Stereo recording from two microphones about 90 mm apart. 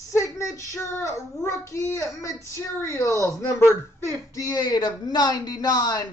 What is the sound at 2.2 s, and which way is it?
Speech, 35° left (ahead or behind).